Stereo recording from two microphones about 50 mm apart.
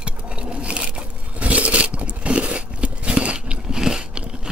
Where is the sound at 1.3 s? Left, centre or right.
Right.